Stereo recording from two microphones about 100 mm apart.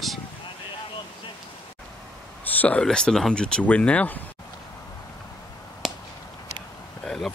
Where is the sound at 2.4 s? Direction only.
15° left (ahead or behind).